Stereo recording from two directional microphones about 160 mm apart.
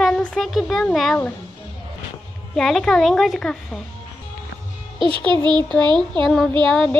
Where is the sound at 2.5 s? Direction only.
Centre (ahead or behind).